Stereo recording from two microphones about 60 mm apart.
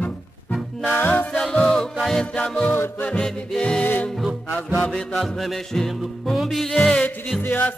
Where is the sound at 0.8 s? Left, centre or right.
Left.